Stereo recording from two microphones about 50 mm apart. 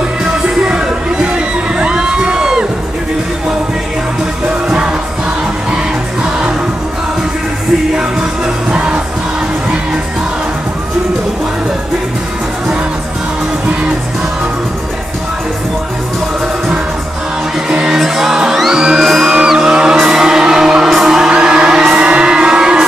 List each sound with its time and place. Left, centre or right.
0.7 s crowd: centre
4.6 s music: centre
8.7 s music: right
17.6 s music: centre